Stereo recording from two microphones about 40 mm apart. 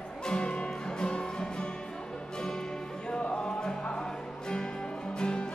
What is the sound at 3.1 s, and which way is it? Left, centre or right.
Music, left.